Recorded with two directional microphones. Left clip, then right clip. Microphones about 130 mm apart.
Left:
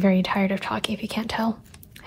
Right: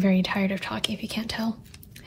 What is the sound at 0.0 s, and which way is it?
A woman's voice, 30° left (ahead or behind).